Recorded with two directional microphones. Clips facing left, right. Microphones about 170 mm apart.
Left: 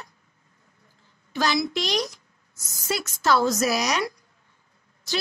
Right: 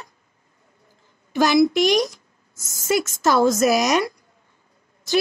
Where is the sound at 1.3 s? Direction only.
50° right (ahead or behind).